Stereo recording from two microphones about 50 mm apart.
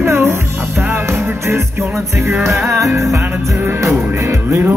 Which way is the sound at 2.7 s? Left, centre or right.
Right.